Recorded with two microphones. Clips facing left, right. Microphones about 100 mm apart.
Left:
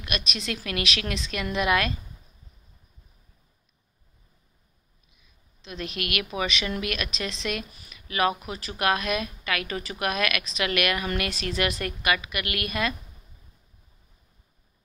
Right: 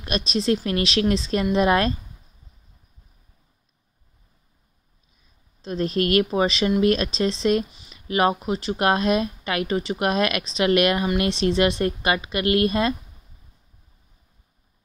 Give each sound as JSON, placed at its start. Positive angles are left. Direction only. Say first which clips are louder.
{"t": 0.0, "sound": "speech", "louder": "right 9 dB", "side_deg": -30}
{"t": 5.1, "sound": "speech", "louder": "right 1 dB", "side_deg": -40}